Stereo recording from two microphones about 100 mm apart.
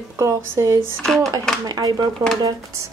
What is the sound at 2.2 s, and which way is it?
Speech, 30° right (ahead or behind).